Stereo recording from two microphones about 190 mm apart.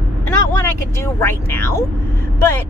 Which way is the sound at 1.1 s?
15° left (ahead or behind).